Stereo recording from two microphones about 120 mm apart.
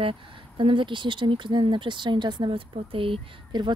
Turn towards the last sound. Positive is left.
turn(degrees=-45)  # may be behind; listen again after turning